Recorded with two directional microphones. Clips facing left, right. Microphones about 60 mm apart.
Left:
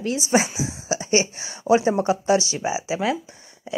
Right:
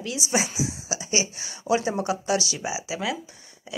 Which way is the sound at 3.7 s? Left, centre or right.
Left.